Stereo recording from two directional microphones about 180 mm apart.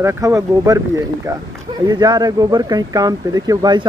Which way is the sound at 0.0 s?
20° right (ahead or behind).